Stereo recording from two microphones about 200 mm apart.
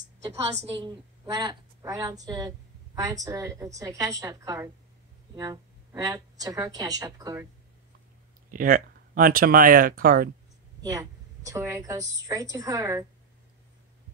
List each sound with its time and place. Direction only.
0.7 s a woman's voice: 20° right (ahead or behind)
8.5 s speech: 45° right (ahead or behind)
10.8 s a woman's voice: 15° right (ahead or behind)